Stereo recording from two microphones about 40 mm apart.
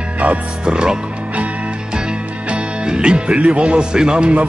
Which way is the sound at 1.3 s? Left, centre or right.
Right.